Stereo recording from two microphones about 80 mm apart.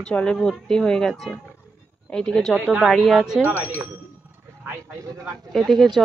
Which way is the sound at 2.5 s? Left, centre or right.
Centre.